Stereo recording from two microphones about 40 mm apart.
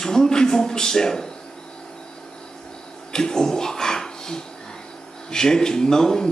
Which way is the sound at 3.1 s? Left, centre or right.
Centre.